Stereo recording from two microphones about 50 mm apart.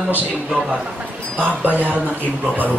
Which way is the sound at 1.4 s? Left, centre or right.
Right.